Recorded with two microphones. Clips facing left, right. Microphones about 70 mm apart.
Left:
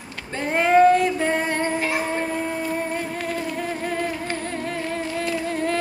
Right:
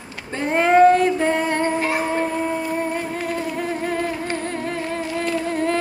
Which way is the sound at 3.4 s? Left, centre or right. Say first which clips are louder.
Right 2 dB; centre.